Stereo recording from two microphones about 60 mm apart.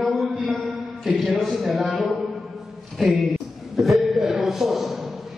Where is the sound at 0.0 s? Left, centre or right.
Centre.